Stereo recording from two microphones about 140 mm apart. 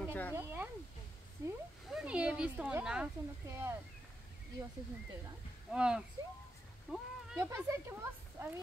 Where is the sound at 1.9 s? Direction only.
10° right (ahead or behind).